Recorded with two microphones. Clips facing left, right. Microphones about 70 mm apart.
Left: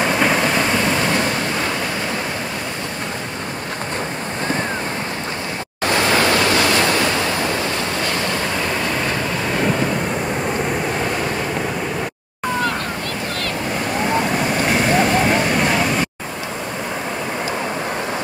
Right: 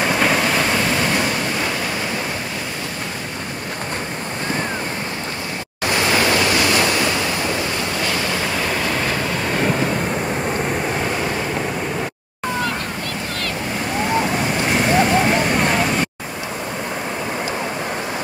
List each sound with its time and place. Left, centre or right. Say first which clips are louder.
0.0 s train: left 1 dB; centre
1.1 s waves: left 1 dB; centre
6.1 s waves: even; centre
8.5 s waves: even; centre
10.4 s vehicle: left 1 dB; centre
14.1 s vehicle: even; centre